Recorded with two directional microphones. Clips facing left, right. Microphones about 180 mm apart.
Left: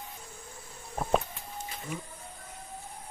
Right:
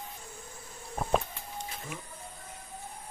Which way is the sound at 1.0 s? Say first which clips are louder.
Left 1 dB; 5° left (ahead or behind).